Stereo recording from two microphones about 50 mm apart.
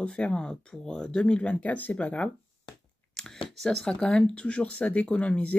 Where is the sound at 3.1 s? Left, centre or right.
Centre.